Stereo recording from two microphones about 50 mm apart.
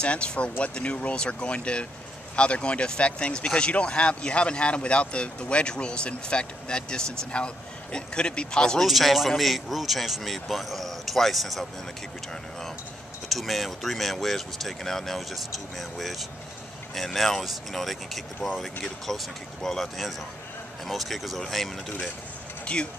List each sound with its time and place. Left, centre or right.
0.0 s speech: left
8.8 s speech: centre
13.3 s speech: centre